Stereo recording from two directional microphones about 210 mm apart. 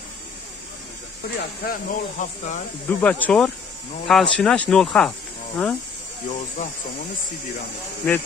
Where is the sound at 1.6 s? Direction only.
40° left (ahead or behind).